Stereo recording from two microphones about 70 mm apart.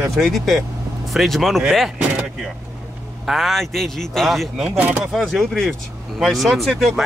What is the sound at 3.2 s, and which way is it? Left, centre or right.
Speech, centre.